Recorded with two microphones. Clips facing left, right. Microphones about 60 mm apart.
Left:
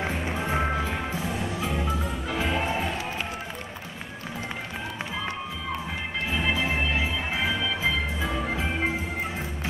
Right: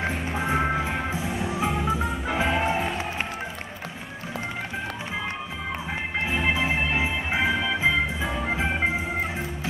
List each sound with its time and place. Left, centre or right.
0.3 s music: centre
6.1 s music: right